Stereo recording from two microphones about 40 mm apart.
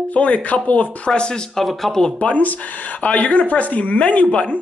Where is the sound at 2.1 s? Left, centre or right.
Left.